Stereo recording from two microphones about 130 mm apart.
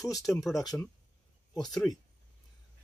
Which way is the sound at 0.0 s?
Centre (ahead or behind).